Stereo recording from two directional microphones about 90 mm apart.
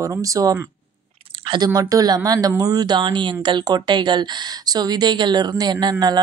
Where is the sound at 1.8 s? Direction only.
45° right (ahead or behind).